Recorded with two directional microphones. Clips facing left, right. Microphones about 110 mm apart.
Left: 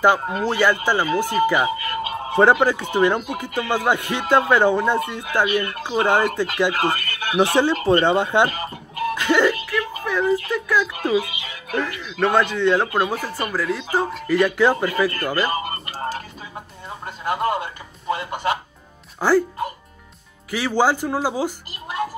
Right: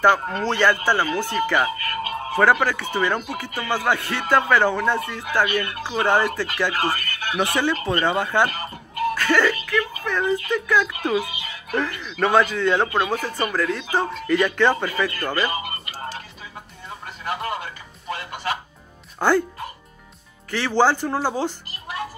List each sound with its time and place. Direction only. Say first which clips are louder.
0.0 s speech: left 1 dB; 10° left (ahead or behind)
7.3 s speech: left 5 dB; 25° left (ahead or behind); by 15.0 s 10° left (ahead or behind)
15.4 s music: left 2 dB; 35° left (ahead or behind)
17.2 s a sound: left 6 dB; 30° left (ahead or behind)
18.1 s music: left 4 dB; 20° left (ahead or behind)
19.1 s speech: left 2 dB; centre (ahead or behind)
20.5 s speech: even; 10° left (ahead or behind)